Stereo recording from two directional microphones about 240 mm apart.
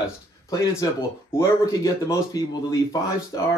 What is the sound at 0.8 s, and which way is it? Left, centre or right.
Speech, centre.